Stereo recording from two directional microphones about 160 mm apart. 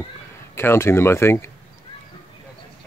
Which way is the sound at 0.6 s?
15° left (ahead or behind).